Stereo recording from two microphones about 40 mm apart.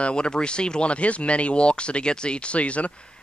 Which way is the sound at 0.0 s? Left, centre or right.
Left.